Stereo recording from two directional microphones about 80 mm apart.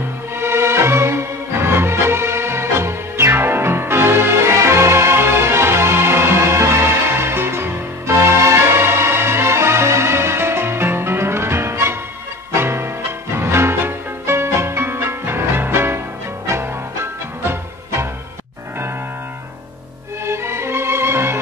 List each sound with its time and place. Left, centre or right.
0.4 s music: right
20.2 s music: right